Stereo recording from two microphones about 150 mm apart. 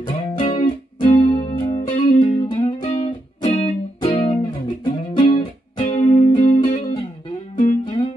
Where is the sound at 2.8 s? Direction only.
50° left (ahead or behind).